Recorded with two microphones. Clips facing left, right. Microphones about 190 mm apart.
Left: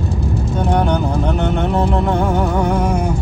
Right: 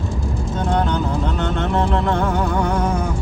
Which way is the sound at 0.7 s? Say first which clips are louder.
Left 3 dB; 15° left (ahead or behind).